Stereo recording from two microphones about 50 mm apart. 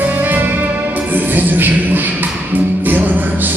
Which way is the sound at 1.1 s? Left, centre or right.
Right.